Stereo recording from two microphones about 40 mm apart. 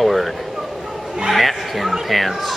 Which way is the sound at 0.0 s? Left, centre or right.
Centre.